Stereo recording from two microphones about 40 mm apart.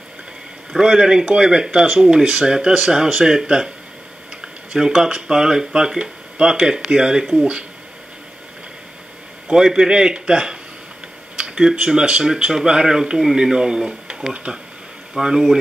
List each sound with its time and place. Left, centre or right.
0.7 s speech: centre
4.7 s speech: centre
9.5 s speech: centre
11.3 s a sound: right
11.7 s speech: right
13.8 s speech: right
15.1 s speech: centre